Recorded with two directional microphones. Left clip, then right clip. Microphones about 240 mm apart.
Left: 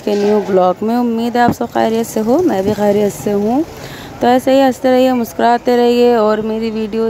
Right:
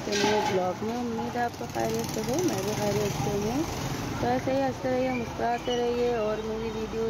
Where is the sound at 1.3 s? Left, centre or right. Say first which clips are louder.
Left 18 dB; left.